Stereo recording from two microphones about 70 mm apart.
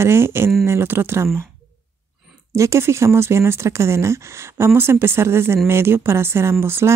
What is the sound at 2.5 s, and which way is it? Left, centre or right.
Speech, right.